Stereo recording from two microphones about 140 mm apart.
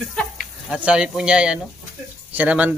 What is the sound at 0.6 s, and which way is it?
Speech, 5° right (ahead or behind).